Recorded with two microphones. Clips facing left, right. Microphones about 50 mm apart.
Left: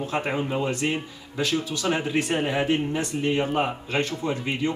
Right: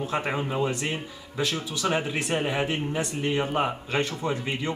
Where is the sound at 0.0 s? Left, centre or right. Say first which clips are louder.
Left 1 dB; centre.